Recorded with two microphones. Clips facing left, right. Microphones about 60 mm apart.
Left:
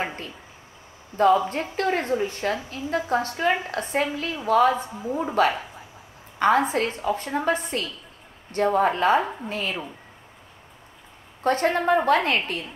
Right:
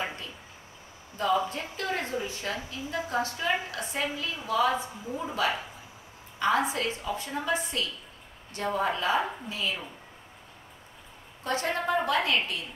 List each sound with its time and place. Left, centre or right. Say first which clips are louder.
0.0 s a sound: left 5 dB; left
1.1 s a woman's voice: left 8 dB; left
11.4 s a woman's voice: left 8 dB; left